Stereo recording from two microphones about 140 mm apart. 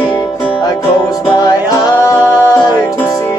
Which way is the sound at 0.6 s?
30° left (ahead or behind).